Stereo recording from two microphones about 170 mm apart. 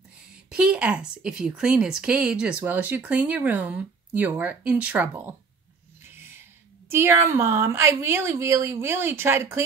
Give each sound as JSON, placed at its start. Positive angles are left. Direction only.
{"t": 0.5, "sound": "speech", "side_deg": -5}
{"t": 6.0, "sound": "a sound", "side_deg": -15}
{"t": 6.9, "sound": "speech", "side_deg": -15}